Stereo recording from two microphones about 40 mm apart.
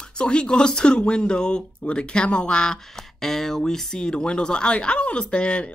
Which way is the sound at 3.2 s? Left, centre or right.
Centre.